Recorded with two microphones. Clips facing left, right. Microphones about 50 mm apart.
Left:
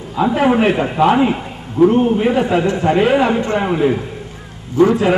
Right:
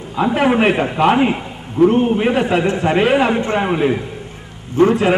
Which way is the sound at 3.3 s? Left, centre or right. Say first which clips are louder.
Even; right.